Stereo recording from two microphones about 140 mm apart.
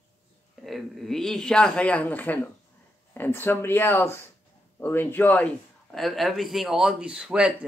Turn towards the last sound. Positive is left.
turn(degrees=-10)  # may be behind; listen again after turning